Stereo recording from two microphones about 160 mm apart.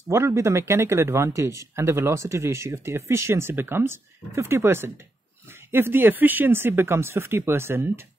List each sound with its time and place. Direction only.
0.1 s speech: 15° right (ahead or behind)